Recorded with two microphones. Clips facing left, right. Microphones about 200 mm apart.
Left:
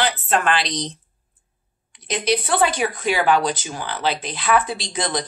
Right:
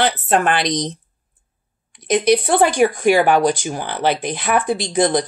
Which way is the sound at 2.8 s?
50° right (ahead or behind).